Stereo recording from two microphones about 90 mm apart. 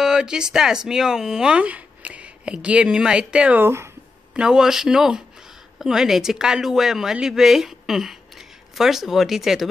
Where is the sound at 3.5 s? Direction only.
25° right (ahead or behind).